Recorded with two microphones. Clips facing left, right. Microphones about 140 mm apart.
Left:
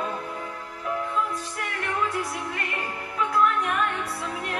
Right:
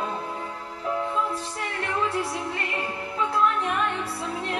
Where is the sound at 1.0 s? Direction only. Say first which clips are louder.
Even; 30° right (ahead or behind).